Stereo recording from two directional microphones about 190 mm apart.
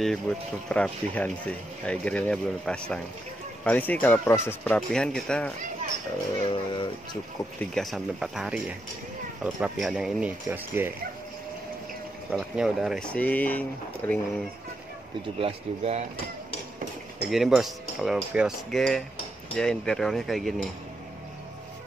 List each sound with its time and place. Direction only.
0.3 s speech: 5° left (ahead or behind)
6.5 s speech: 25° left (ahead or behind)
7.7 s speech: centre (ahead or behind)
12.3 s speech: 5° right (ahead or behind)
15.4 s speech: 35° right (ahead or behind)
17.3 s speech: centre (ahead or behind)